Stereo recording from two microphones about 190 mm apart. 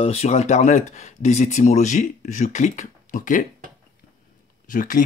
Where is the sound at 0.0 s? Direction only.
35° left (ahead or behind).